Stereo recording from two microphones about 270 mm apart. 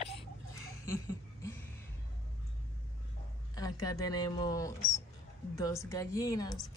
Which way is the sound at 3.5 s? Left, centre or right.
Centre.